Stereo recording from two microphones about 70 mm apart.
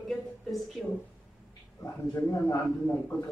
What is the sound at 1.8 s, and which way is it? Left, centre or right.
Speech, left.